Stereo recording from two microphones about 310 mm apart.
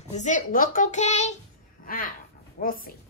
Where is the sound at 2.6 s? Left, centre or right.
Left.